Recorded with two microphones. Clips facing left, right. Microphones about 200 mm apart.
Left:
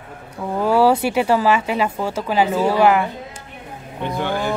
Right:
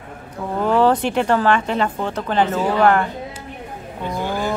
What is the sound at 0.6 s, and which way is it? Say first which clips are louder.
Speech: left 1 dB; 10° left (ahead or behind).